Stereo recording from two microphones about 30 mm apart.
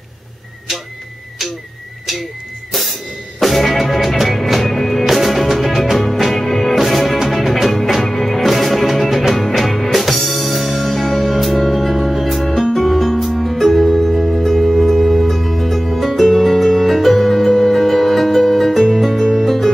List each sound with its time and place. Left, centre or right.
2.7 s music: centre
7.9 s music: centre